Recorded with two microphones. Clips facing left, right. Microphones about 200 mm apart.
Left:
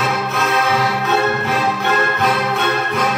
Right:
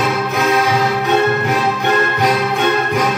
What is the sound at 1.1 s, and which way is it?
Music, 15° right (ahead or behind).